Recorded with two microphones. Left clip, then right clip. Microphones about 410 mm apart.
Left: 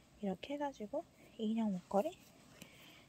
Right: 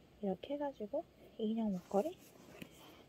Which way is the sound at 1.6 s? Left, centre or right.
Left.